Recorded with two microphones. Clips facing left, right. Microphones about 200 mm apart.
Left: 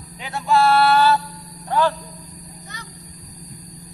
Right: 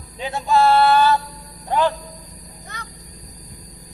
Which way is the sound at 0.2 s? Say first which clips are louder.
Right 1 dB; 20° right (ahead or behind).